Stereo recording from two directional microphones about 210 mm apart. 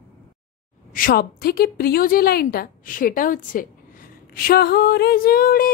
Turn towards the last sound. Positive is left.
turn(degrees=45)  # may be behind; listen again after turning